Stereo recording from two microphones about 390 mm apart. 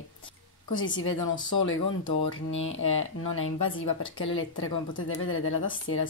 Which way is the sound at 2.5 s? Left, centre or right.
Left.